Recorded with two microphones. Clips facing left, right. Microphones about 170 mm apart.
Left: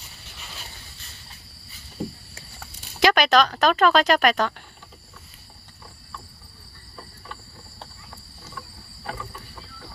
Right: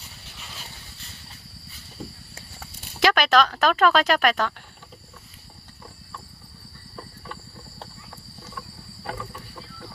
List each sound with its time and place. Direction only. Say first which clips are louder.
3.0 s speech: left 1 dB; centre (ahead or behind)